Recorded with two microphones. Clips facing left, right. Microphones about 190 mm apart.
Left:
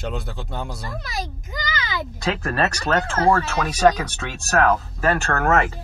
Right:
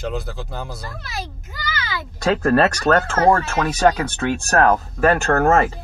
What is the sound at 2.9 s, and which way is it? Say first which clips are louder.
Speech: right 5 dB; 45° right (ahead or behind).